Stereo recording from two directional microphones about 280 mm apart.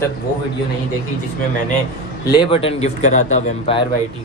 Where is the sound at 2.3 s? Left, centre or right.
Centre.